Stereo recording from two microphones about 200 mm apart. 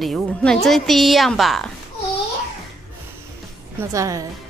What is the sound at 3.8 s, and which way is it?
Speech, 15° right (ahead or behind).